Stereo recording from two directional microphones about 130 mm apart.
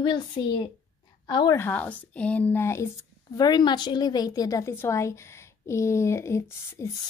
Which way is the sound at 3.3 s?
30° left (ahead or behind).